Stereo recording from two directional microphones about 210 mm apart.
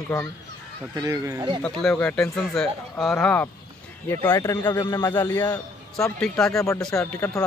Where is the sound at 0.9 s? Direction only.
15° right (ahead or behind).